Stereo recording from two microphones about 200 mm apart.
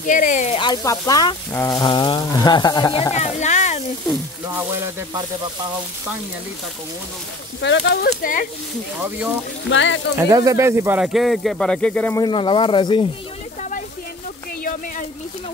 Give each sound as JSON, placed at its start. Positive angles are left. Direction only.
{"t": 0.0, "sound": "speech", "side_deg": 40}
{"t": 0.6, "sound": "speech", "side_deg": 20}
{"t": 7.6, "sound": "speech", "side_deg": 60}
{"t": 9.7, "sound": "speech", "side_deg": 65}
{"t": 10.1, "sound": "speech", "side_deg": -15}
{"t": 12.2, "sound": "speech", "side_deg": 25}
{"t": 13.6, "sound": "a sound", "side_deg": 40}
{"t": 14.6, "sound": "speech", "side_deg": 40}